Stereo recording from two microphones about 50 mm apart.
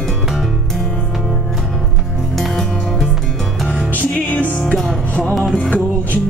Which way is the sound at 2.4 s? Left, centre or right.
Centre.